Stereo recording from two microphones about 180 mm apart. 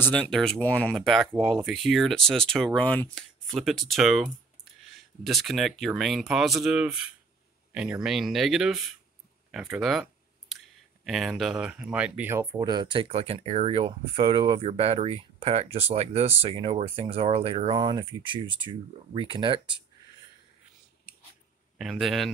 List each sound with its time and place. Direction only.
0.0 s speech: 5° left (ahead or behind)
5.2 s speech: centre (ahead or behind)
11.1 s speech: centre (ahead or behind); by 19.8 s 25° right (ahead or behind)
21.7 s speech: centre (ahead or behind)